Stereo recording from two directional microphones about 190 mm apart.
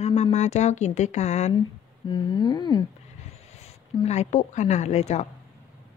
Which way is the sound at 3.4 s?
35° left (ahead or behind).